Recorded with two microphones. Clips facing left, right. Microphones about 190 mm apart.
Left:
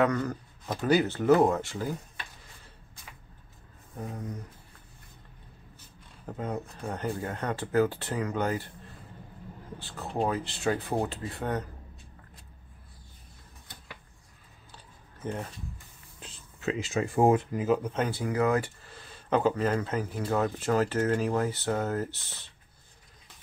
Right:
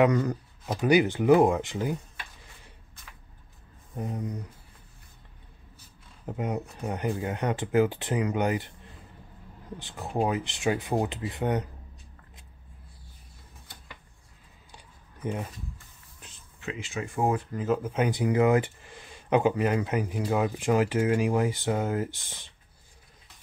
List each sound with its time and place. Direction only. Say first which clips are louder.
0.0 s speech: right 4 dB; 15° right (ahead or behind)
4.0 s speech: right 4 dB; 20° right (ahead or behind)
6.2 s speech: right 3 dB; 15° right (ahead or behind)
9.8 s speech: right 2 dB; 20° right (ahead or behind)
15.2 s speech: right 2 dB; 15° right (ahead or behind)
16.2 s speech: left 4 dB; 35° left (ahead or behind)
17.6 s speech: left 1 dB; centre (ahead or behind)
17.9 s speech: right 4 dB; 15° right (ahead or behind)